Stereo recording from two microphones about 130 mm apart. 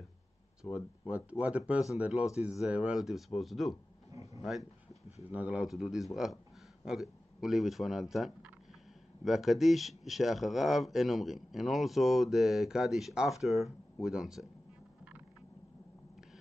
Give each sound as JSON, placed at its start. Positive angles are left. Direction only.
{"t": 0.7, "sound": "speech", "side_deg": -10}
{"t": 4.1, "sound": "a sound", "side_deg": -25}
{"t": 4.4, "sound": "speech", "side_deg": 0}